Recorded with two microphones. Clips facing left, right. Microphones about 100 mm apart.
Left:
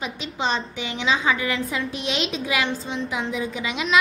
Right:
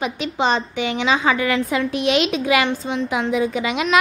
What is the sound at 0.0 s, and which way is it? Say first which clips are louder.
A woman's voice: right 6 dB; 60° right (ahead or behind).